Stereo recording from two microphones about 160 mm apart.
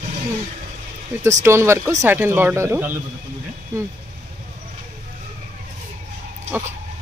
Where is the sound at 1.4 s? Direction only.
15° right (ahead or behind).